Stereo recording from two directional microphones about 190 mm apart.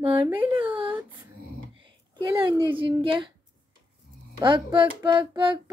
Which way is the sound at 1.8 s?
25° right (ahead or behind).